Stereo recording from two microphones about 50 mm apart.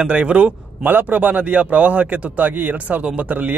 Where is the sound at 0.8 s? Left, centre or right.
Right.